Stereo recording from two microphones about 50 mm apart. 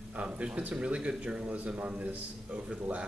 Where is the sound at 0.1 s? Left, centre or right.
Right.